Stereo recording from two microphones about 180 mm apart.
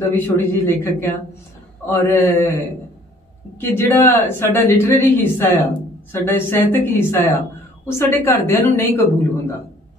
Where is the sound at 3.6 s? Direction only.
15° left (ahead or behind).